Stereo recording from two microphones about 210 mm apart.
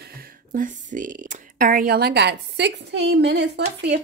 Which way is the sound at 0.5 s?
40° right (ahead or behind).